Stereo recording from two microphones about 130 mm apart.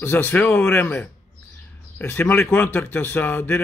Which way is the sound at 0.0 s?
15° left (ahead or behind).